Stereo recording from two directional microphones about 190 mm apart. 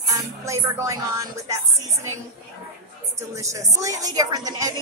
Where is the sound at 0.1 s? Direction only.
15° right (ahead or behind).